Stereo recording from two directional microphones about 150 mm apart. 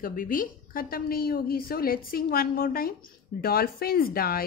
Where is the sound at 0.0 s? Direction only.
70° left (ahead or behind).